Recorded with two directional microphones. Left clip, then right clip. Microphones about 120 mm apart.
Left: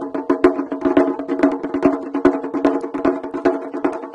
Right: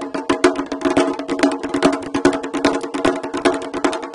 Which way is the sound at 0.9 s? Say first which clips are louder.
Left 1 dB; 30° right (ahead or behind).